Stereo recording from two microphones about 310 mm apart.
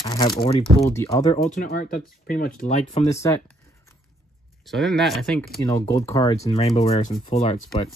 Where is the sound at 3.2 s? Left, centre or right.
Centre.